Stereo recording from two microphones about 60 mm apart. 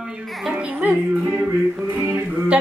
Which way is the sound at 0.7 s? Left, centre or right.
Right.